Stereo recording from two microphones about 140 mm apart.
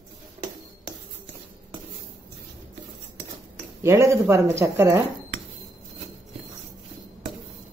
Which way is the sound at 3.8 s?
20° right (ahead or behind).